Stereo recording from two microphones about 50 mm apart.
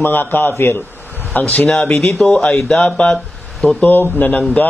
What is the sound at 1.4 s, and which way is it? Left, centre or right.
Speech, left.